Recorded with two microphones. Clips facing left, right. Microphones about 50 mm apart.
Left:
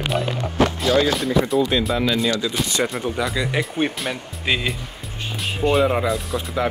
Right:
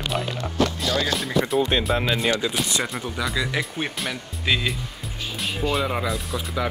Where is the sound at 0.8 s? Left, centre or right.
Left.